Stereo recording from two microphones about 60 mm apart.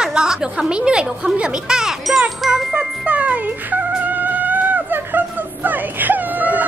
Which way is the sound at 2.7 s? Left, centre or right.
Right.